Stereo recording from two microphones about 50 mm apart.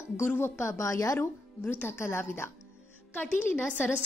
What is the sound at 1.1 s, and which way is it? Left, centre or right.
Speech, left.